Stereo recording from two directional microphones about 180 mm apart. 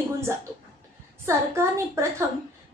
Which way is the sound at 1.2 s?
15° right (ahead or behind).